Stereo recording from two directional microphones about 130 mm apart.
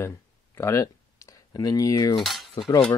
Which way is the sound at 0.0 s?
20° left (ahead or behind).